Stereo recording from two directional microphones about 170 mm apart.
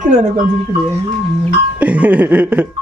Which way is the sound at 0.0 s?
40° right (ahead or behind).